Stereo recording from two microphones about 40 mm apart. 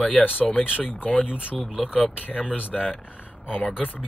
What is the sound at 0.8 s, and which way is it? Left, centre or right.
Speech, left.